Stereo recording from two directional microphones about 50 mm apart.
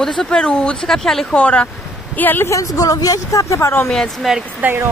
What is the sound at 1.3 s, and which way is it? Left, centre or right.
Speech, left.